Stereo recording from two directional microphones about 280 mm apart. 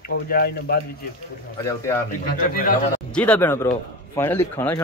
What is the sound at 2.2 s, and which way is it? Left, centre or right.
Speech, left.